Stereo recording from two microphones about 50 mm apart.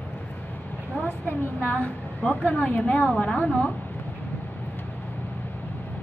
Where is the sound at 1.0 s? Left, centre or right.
Left.